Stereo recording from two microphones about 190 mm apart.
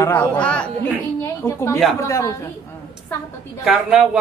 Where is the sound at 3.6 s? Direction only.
5° right (ahead or behind).